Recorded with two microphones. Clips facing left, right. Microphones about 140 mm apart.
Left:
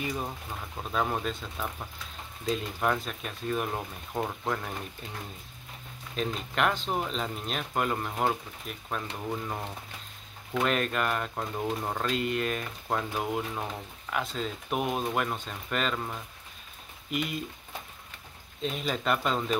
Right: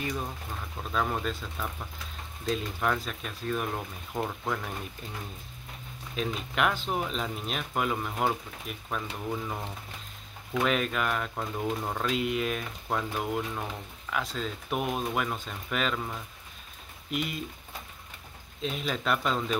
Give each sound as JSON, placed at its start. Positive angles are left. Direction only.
{"t": 0.0, "sound": "speech", "side_deg": 10}
{"t": 6.1, "sound": "speech", "side_deg": -5}
{"t": 18.6, "sound": "speech", "side_deg": 0}